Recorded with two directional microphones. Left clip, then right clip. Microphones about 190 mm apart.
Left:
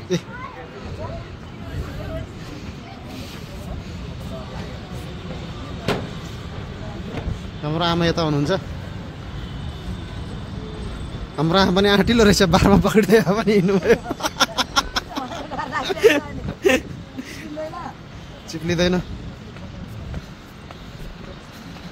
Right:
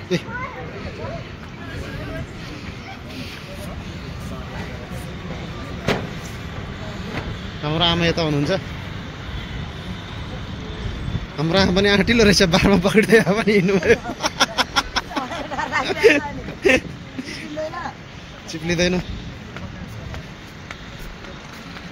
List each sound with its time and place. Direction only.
0.1 s a man's voice: 15° left (ahead or behind)
7.6 s a man's voice: 20° left (ahead or behind)
11.3 s a man's voice: 15° left (ahead or behind)
15.7 s a sound: 15° left (ahead or behind)
18.5 s speech: 20° left (ahead or behind)